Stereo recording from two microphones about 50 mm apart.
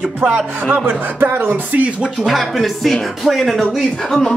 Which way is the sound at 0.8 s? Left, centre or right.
Right.